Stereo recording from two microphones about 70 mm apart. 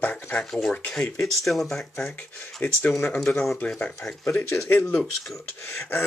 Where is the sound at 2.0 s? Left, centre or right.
Left.